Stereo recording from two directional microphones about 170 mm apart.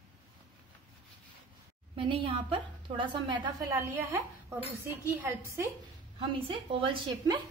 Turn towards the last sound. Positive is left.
turn(degrees=-25)  # may be behind; listen again after turning